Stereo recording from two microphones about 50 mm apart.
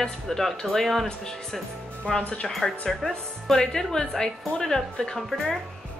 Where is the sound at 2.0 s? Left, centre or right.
Centre.